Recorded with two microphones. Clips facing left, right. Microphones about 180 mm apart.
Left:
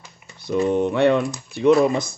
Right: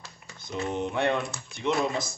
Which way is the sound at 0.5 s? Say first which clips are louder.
Left 11 dB; 65° left (ahead or behind).